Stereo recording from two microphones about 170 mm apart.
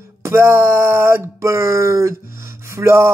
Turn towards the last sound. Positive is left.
turn(degrees=-15)  # may be behind; listen again after turning